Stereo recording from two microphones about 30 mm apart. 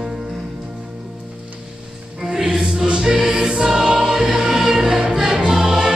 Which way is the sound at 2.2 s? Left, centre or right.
Centre.